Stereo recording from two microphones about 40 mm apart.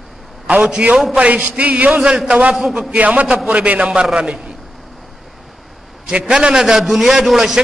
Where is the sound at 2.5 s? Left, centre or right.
Centre.